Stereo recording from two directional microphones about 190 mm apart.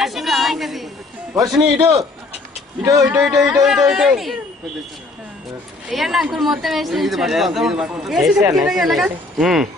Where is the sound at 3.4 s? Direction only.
Centre (ahead or behind).